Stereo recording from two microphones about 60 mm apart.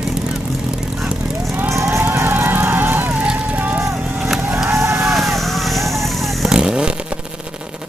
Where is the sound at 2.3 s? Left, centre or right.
Right.